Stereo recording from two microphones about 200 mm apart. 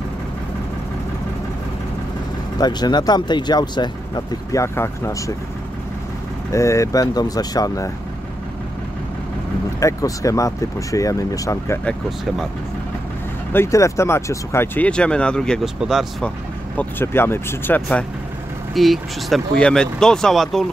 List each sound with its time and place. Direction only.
2.6 s speech: 20° left (ahead or behind)
6.5 s speech: 15° left (ahead or behind)
9.8 s speech: 15° left (ahead or behind)
13.5 s speech: 15° left (ahead or behind)
16.7 s speech: 10° left (ahead or behind)